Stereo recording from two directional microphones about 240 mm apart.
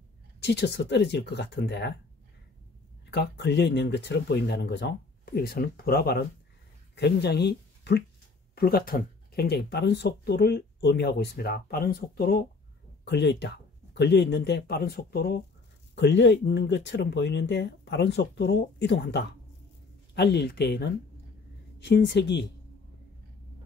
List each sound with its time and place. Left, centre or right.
0.4 s speech: left
3.1 s speech: left